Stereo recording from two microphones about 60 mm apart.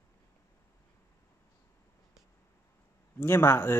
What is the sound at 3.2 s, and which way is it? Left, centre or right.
Speech, left.